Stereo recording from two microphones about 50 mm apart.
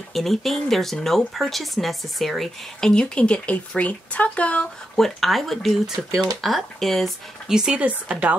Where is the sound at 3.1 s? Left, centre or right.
Left.